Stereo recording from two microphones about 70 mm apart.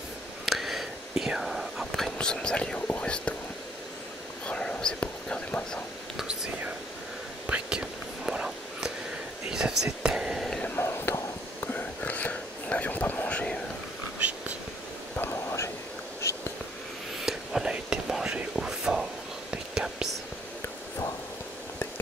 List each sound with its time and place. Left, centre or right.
0.5 s whispering: centre
4.5 s whispering: centre
7.4 s whispering: centre
10.8 s a sound: left
11.6 s whispering: left
14.2 s whispering: right
15.1 s whispering: left
17.2 s whispering: centre